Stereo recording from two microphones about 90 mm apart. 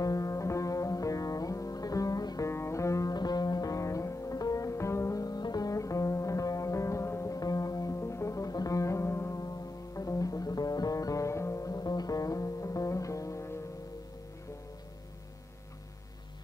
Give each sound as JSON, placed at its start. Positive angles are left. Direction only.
{"t": 0.0, "sound": "music", "side_deg": 40}
{"t": 2.5, "sound": "music", "side_deg": 30}
{"t": 5.2, "sound": "music", "side_deg": 45}
{"t": 7.3, "sound": "music", "side_deg": 40}
{"t": 9.4, "sound": "music", "side_deg": 40}